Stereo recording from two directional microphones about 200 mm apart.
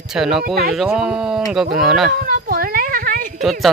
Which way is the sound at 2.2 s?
45° right (ahead or behind).